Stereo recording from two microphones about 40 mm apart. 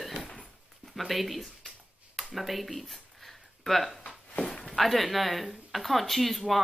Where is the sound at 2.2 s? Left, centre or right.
Centre.